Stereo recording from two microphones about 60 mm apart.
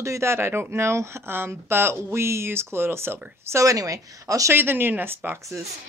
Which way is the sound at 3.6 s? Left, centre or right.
Right.